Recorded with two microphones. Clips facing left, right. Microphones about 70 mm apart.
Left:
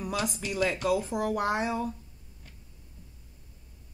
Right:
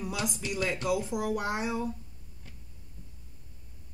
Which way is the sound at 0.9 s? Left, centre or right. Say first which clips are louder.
Left 2 dB; left.